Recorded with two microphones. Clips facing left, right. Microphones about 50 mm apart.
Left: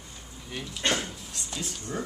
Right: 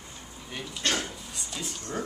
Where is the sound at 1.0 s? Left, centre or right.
Centre.